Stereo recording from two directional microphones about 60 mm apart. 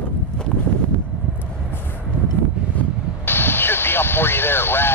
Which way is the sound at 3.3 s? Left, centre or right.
Left.